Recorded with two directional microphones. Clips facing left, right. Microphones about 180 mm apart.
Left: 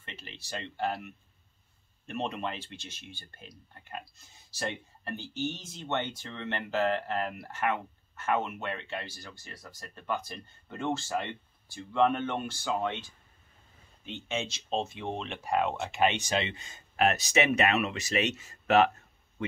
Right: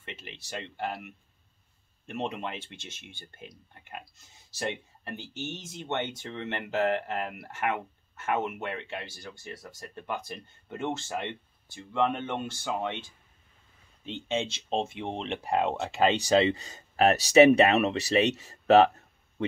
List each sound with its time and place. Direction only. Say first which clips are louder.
0.0 s speech: right 3 dB; 20° right (ahead or behind)
2.0 s speech: even; 20° right (ahead or behind)
14.0 s speech: right 4 dB; 30° right (ahead or behind)